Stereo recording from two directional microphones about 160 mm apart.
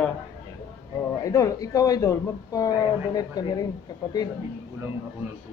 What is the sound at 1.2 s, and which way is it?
Speech, 20° left (ahead or behind).